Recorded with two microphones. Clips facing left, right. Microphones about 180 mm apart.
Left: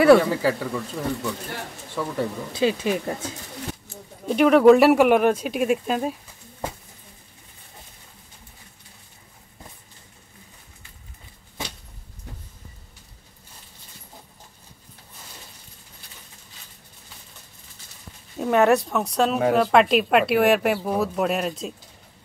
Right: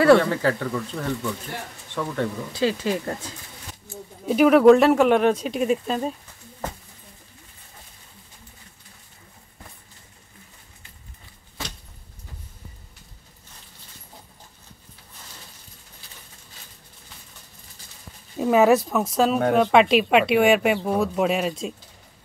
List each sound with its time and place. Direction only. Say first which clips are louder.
0.0 s speech: left 1 dB; 10° left (ahead or behind)
2.5 s speech: left 2 dB; 15° left (ahead or behind)
4.3 s speech: even; 5° right (ahead or behind)
18.4 s speech: right 1 dB; centre (ahead or behind)